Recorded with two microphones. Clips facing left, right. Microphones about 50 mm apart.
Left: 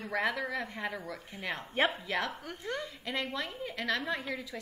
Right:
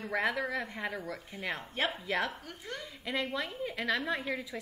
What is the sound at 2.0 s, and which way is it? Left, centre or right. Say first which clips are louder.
A woman's voice: right 1 dB; centre.